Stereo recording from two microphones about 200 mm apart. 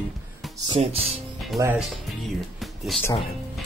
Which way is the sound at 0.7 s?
30° right (ahead or behind).